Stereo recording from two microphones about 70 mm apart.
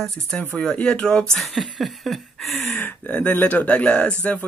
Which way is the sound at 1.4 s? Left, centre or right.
Centre.